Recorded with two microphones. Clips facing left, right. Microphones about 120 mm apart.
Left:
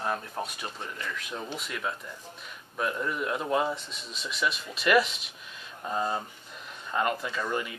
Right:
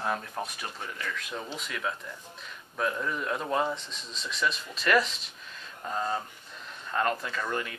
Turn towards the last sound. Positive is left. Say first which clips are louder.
# left 1 dB
turn(degrees=10)  # may be behind; listen again after turning